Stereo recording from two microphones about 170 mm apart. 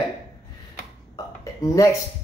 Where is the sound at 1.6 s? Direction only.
20° left (ahead or behind).